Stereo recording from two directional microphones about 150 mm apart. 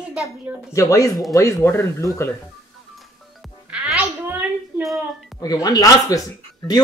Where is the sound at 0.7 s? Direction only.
20° left (ahead or behind).